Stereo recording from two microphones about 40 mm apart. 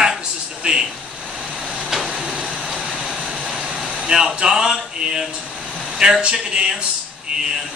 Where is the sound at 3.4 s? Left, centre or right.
Right.